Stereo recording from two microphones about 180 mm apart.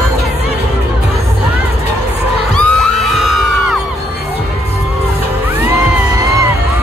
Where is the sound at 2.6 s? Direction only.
Centre (ahead or behind).